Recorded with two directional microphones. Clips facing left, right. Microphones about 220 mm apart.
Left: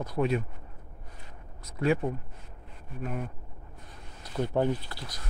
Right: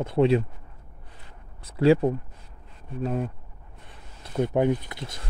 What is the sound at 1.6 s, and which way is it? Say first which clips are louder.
Speech: right 8 dB; 30° right (ahead or behind).